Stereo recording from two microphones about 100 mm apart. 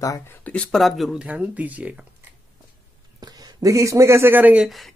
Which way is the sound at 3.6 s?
30° right (ahead or behind).